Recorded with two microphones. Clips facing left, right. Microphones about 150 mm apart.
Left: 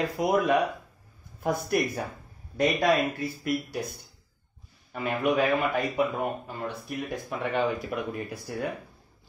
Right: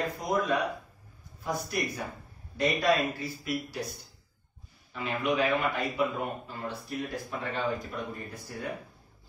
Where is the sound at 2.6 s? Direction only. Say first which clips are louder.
Left 3 dB; 55° left (ahead or behind).